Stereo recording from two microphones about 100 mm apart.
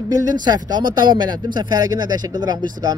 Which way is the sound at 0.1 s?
40° right (ahead or behind).